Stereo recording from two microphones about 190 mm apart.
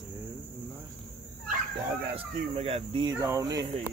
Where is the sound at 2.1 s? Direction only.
30° right (ahead or behind).